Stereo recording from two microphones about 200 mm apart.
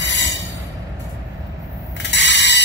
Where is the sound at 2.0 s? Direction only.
60° left (ahead or behind).